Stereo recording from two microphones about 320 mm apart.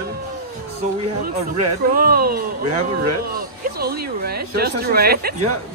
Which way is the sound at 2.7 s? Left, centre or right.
Right.